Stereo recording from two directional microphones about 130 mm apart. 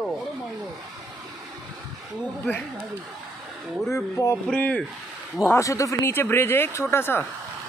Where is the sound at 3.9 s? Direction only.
20° left (ahead or behind).